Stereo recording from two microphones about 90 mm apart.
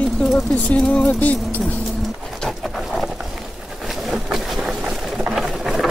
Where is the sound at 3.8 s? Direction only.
Centre (ahead or behind).